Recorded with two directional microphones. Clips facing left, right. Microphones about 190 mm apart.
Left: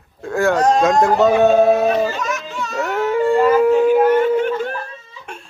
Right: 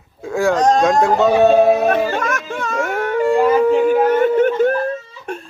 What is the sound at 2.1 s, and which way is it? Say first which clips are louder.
Speech: right 3 dB; 55° right (ahead or behind).